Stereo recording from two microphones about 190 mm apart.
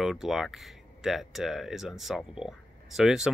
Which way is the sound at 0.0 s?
Centre (ahead or behind).